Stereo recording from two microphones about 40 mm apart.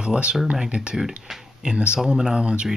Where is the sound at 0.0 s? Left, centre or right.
Right.